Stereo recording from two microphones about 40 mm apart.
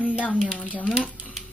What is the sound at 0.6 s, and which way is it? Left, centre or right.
Child singing, left.